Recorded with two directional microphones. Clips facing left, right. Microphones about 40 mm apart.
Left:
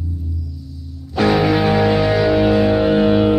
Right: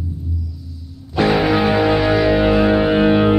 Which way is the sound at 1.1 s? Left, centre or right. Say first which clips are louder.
Even; centre.